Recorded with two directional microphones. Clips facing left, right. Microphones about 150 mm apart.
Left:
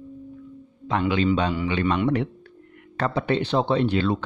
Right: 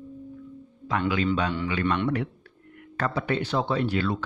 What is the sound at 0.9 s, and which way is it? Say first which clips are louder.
Speech: left 3 dB; 25° left (ahead or behind).